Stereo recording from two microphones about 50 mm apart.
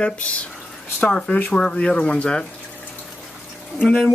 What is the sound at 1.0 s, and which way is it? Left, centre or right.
Speech, centre.